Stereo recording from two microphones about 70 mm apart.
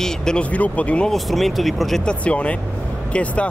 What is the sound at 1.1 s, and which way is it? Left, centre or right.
Speech, centre.